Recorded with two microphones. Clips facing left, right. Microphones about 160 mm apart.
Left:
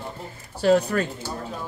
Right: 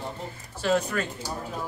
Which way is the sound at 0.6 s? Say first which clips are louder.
Left 6 dB; 40° left (ahead or behind).